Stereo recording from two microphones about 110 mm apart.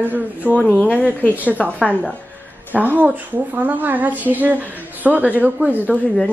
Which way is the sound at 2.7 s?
15° right (ahead or behind).